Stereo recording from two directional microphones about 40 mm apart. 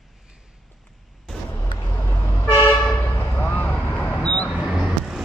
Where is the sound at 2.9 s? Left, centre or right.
Left.